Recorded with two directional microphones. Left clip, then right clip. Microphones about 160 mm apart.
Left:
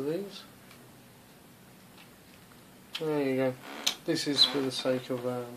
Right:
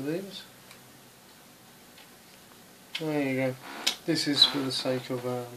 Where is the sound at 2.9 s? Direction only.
30° left (ahead or behind).